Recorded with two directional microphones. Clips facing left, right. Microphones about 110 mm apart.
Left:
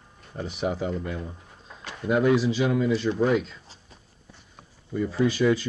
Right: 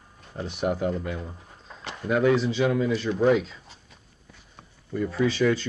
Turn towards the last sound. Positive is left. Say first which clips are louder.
# left 1 dB
turn(degrees=10)  # may be behind; listen again after turning